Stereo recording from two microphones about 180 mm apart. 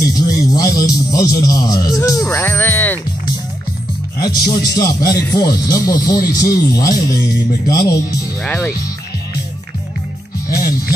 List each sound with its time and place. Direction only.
0.0 s speech: 20° left (ahead or behind)
4.2 s a man's voice: 20° left (ahead or behind)